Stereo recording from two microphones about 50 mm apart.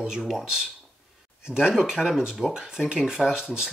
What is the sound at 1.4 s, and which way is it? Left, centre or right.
Speech, centre.